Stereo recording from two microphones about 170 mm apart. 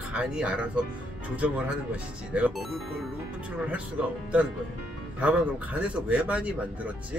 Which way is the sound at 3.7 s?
5° right (ahead or behind).